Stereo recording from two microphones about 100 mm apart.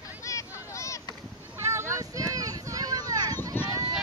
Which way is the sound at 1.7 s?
30° right (ahead or behind).